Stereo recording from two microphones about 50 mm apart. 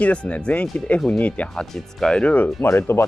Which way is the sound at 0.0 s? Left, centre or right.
Left.